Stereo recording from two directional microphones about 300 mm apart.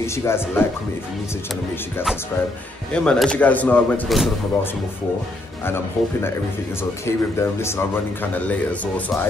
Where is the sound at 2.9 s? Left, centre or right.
Centre.